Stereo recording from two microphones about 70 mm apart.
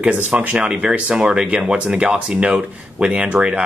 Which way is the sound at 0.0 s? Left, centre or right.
Centre.